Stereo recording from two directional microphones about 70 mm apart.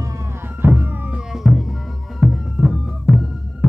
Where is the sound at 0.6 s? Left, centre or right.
Right.